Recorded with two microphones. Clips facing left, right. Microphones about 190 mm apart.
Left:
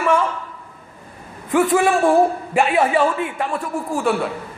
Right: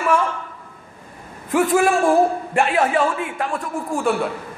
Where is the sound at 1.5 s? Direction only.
Centre (ahead or behind).